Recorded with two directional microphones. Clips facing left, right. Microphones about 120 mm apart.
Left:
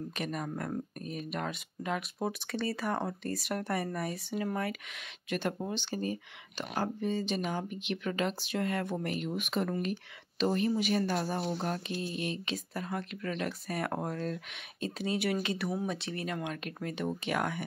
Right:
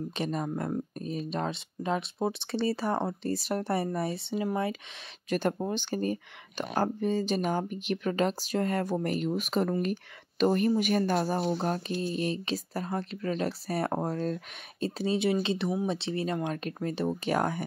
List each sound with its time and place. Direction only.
0.1 s speech: 30° right (ahead or behind)
5.3 s speech: 40° right (ahead or behind)